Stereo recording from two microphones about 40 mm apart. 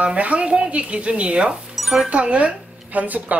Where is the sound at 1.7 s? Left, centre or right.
Centre.